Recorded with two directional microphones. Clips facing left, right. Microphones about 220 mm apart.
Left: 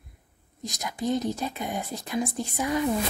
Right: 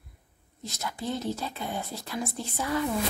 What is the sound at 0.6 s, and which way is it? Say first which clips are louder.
A woman's voice: left 4 dB; 15° left (ahead or behind).